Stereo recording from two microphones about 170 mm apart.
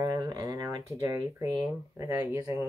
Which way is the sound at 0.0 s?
20° right (ahead or behind).